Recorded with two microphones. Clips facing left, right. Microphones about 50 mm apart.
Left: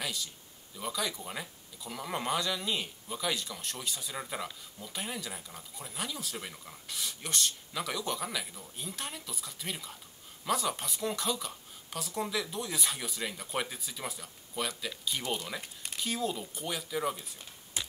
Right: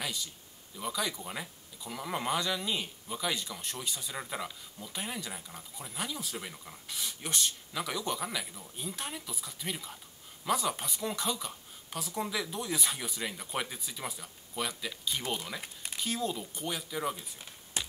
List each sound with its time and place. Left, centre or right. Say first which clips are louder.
0.0 s a man's voice: even; centre
15.6 s a sound: right 1 dB; centre
16.0 s speech: even; centre